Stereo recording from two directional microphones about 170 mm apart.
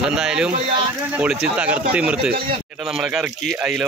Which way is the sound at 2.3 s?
60° right (ahead or behind).